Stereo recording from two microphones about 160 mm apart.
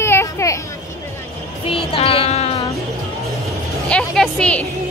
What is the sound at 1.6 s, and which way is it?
Music, 35° left (ahead or behind).